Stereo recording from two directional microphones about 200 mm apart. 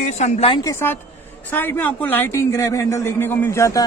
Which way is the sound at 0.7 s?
10° left (ahead or behind).